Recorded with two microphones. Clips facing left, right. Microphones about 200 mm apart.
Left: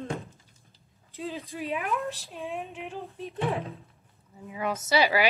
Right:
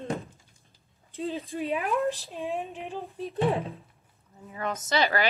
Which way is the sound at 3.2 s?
30° right (ahead or behind).